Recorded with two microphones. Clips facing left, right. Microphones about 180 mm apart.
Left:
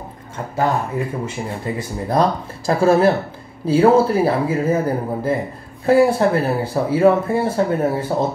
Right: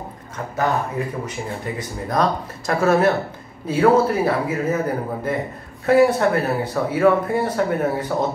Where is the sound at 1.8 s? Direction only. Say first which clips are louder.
Left 3 dB; 30° left (ahead or behind).